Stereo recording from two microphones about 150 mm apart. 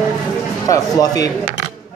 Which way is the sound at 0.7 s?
25° left (ahead or behind).